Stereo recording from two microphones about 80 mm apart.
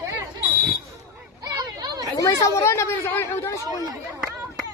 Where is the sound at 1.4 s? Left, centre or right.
Right.